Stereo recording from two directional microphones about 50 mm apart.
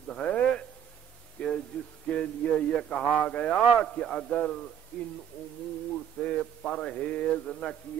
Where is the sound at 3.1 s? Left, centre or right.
Left.